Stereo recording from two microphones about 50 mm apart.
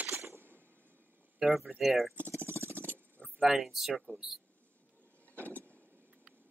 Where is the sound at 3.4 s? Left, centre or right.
Centre.